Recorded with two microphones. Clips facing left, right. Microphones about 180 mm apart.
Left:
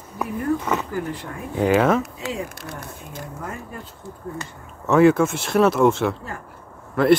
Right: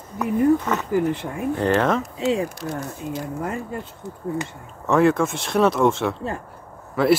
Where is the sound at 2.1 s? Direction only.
30° right (ahead or behind).